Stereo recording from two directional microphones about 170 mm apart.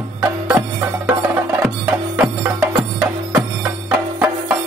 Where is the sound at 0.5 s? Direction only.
10° right (ahead or behind).